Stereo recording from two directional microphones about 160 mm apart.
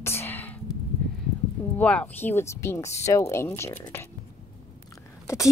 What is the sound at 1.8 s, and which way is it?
Speech, 5° left (ahead or behind).